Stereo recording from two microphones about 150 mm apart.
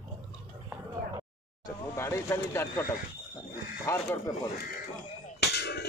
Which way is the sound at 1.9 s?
20° left (ahead or behind).